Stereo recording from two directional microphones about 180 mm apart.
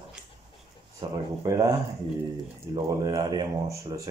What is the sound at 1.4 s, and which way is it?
Speech, 20° right (ahead or behind).